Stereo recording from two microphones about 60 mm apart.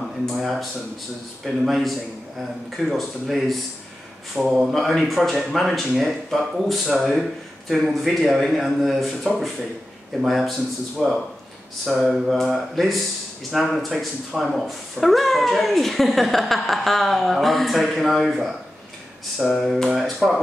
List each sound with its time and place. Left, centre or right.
0.4 s speech: centre
19.6 s speech: centre